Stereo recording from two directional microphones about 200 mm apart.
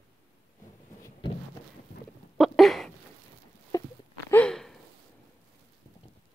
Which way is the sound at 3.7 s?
20° left (ahead or behind).